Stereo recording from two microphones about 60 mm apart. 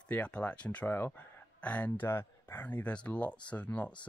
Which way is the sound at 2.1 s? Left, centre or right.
Left.